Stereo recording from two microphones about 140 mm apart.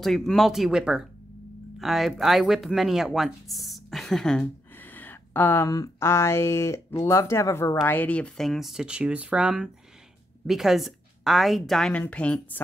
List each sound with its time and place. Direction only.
0.0 s a woman's voice: centre (ahead or behind)